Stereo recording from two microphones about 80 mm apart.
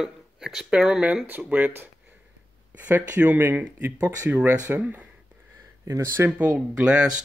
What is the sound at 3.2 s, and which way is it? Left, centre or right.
Speech, right.